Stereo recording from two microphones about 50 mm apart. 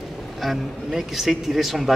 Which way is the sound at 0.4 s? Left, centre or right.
Centre.